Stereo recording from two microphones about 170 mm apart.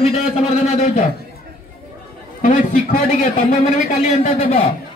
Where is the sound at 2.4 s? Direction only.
50° left (ahead or behind).